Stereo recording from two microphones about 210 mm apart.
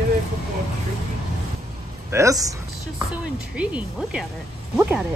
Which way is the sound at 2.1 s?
15° right (ahead or behind).